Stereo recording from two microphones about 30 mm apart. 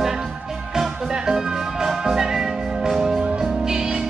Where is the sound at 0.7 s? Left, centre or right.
Centre.